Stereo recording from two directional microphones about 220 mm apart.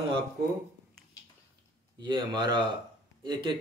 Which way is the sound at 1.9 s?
20° right (ahead or behind).